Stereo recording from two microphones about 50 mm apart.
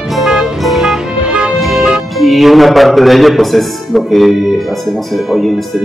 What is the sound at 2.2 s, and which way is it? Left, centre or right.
A man's voice, centre.